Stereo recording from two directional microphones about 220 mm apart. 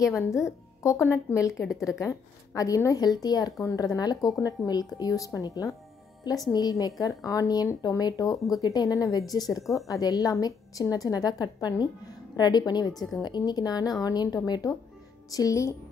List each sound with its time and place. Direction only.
0.1 s a woman's voice: centre (ahead or behind)
0.8 s a woman's voice: 15° left (ahead or behind)
12.9 s a woman's voice: centre (ahead or behind)
13.2 s speech: 20° left (ahead or behind)